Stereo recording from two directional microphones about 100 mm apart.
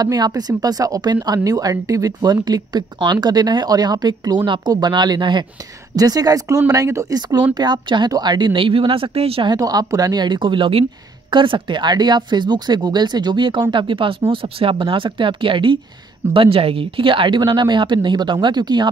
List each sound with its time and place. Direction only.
0.0 s speech: 40° right (ahead or behind)
7.2 s speech: 45° right (ahead or behind); by 9.5 s 80° right
9.5 s speech: 40° right (ahead or behind); by 15.8 s 60° right (ahead or behind)
16.3 s speech: 70° right (ahead or behind); by 18.9 s 45° right (ahead or behind)